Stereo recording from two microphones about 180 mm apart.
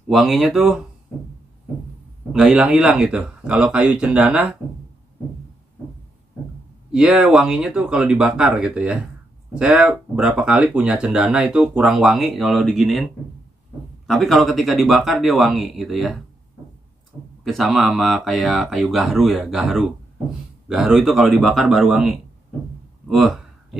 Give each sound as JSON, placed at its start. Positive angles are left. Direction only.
{"t": 0.1, "sound": "speech", "side_deg": 0}
{"t": 2.3, "sound": "speech", "side_deg": -5}
{"t": 6.9, "sound": "speech", "side_deg": -5}
{"t": 17.4, "sound": "speech", "side_deg": 0}
{"t": 23.0, "sound": "a sound", "side_deg": 0}